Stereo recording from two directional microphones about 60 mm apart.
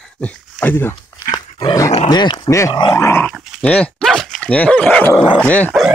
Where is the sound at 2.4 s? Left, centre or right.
Left.